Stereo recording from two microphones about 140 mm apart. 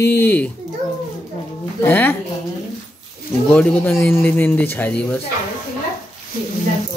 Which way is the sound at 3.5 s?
10° left (ahead or behind).